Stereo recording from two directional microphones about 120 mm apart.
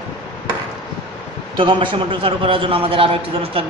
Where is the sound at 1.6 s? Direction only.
45° right (ahead or behind).